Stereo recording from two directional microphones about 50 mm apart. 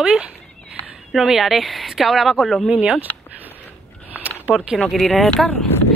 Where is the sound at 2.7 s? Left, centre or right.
Right.